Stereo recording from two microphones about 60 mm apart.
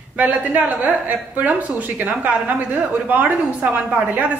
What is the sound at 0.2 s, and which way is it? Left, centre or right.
A woman's voice, right.